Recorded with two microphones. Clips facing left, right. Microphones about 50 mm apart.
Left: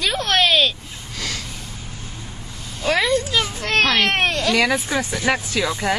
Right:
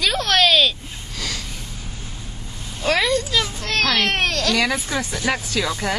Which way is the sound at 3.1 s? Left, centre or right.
Left.